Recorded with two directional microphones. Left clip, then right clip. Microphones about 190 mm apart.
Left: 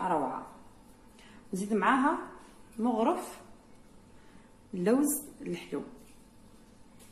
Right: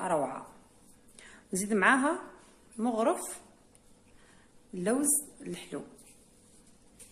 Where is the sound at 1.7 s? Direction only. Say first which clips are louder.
Right 1 dB; 50° right (ahead or behind).